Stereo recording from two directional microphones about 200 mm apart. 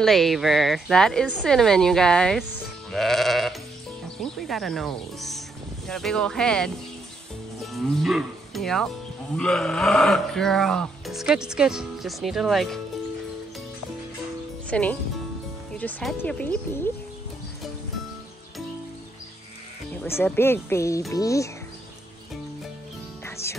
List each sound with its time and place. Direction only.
0.0 s speech: centre (ahead or behind)
2.9 s sheep: centre (ahead or behind)
4.2 s speech: centre (ahead or behind)
14.7 s speech: 5° left (ahead or behind)
20.0 s speech: 10° left (ahead or behind)
23.2 s music: 15° left (ahead or behind)